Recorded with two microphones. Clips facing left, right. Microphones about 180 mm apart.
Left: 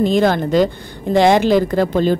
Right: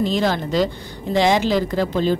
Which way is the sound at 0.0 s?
55° left (ahead or behind).